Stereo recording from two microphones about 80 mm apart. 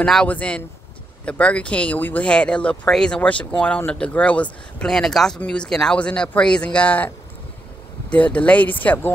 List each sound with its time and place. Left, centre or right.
0.0 s speech: centre
8.1 s speech: centre